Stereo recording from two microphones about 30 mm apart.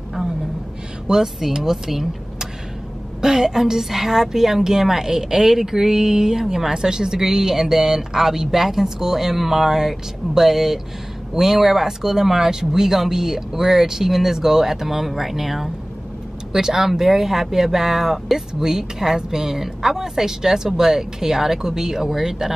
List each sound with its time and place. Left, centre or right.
1.0 s speech: centre
3.2 s speech: centre
6.7 s speech: right